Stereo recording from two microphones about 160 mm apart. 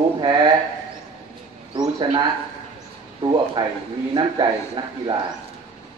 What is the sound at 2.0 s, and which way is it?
Speech, 30° right (ahead or behind).